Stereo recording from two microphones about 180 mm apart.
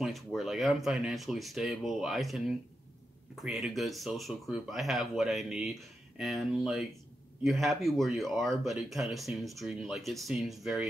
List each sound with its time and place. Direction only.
0.0 s speech: centre (ahead or behind)